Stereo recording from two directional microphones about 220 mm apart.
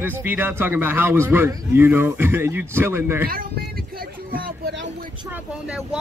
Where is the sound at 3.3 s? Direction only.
40° right (ahead or behind).